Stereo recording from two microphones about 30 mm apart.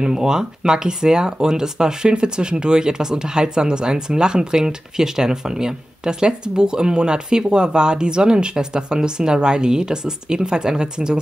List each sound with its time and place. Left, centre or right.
0.0 s speech: right